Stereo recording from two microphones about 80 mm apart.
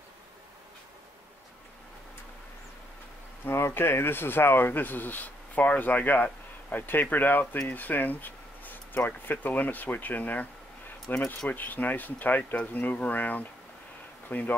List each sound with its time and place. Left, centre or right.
3.4 s speech: left